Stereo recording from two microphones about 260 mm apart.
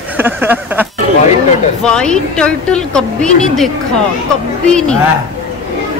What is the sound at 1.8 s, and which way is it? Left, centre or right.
A woman's voice, centre.